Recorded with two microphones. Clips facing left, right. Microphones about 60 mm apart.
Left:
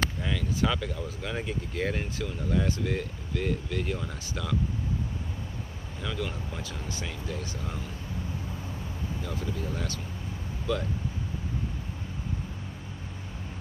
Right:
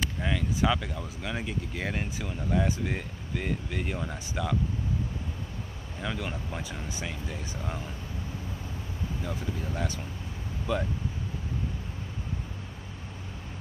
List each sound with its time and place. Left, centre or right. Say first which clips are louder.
0.2 s speech: right 1 dB; centre
6.0 s speech: even; right
9.2 s speech: left 1 dB; centre